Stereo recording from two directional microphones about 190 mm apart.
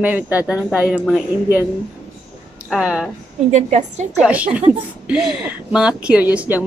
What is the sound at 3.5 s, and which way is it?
Speech, 35° right (ahead or behind).